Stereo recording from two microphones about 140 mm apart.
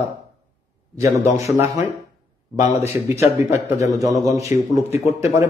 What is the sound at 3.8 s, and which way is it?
Speech, 25° right (ahead or behind).